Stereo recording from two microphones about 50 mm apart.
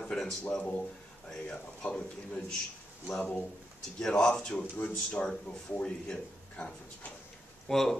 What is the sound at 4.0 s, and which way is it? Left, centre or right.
A man's voice, centre.